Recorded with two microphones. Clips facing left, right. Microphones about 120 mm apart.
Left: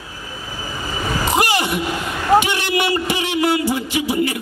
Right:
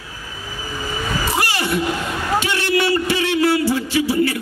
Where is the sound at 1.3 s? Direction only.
15° left (ahead or behind).